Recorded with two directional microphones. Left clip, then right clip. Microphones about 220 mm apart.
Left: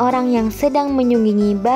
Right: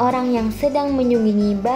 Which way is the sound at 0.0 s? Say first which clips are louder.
Left 2 dB; 45° left (ahead or behind).